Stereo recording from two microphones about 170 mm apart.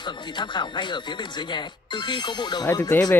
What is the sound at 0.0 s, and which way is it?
Speech, 25° left (ahead or behind).